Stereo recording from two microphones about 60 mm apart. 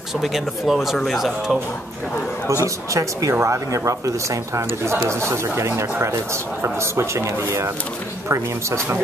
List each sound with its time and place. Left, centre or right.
0.2 s speech: centre
2.4 s speech: right